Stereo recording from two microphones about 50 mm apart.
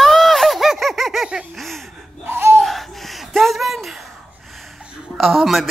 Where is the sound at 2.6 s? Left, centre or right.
Centre.